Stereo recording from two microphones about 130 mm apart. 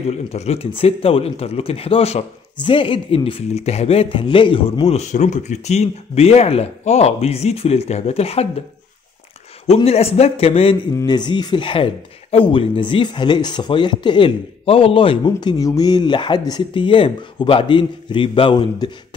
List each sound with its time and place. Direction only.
0.3 s speech: 55° left (ahead or behind)
2.6 s speech: 40° left (ahead or behind)
9.8 s speech: 50° left (ahead or behind)
11.1 s speech: 35° left (ahead or behind)